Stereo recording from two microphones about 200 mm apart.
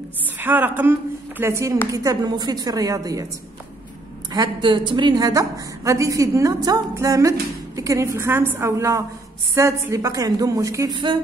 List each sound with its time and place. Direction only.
0.4 s a woman's voice: 10° right (ahead or behind)
4.3 s a woman's voice: 20° right (ahead or behind)